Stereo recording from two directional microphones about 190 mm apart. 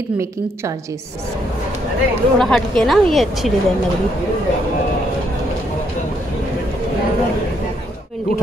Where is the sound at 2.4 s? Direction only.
Centre (ahead or behind).